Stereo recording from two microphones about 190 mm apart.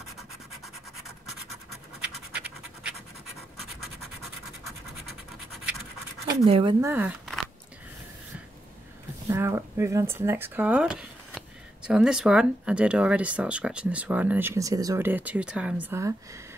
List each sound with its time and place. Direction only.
0.5 s scratch: centre (ahead or behind)
6.4 s speech: 25° right (ahead or behind)
6.8 s speech: 10° right (ahead or behind)
9.3 s speech: 15° right (ahead or behind)